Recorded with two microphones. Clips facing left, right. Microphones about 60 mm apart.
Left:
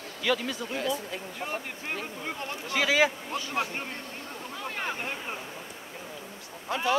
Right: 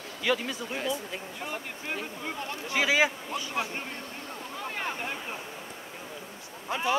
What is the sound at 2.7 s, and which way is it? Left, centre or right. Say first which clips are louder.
Speech: left 1 dB; right.